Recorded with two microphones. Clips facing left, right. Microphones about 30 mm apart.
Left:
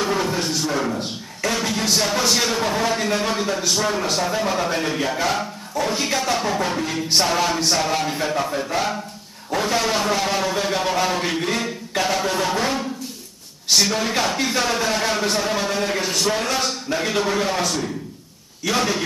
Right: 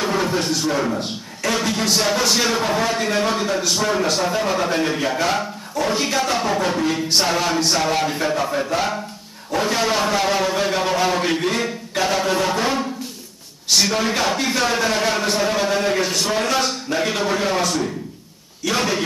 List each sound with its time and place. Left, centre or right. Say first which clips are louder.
0.0 s music: right 1 dB; centre
0.5 s speech: right 2 dB; centre